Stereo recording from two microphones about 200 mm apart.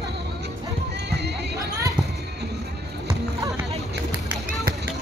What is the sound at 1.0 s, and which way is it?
Music, 55° right (ahead or behind).